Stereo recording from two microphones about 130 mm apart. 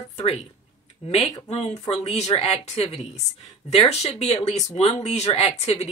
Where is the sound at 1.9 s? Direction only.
55° left (ahead or behind).